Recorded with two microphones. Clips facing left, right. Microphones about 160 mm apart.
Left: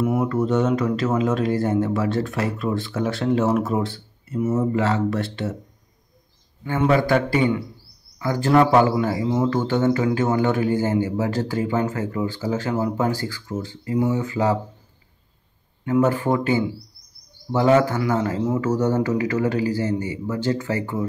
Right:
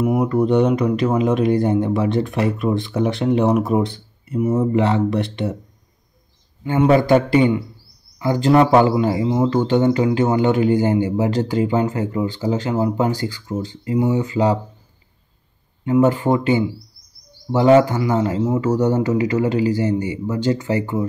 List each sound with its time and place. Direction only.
0.0 s speech: 15° right (ahead or behind)
6.6 s a man's voice: 20° right (ahead or behind)
15.8 s a man's voice: 15° right (ahead or behind)